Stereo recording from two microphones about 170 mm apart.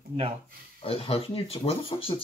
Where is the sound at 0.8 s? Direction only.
35° left (ahead or behind).